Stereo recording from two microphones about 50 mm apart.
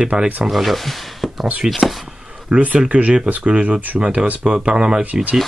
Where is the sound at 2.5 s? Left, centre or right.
Centre.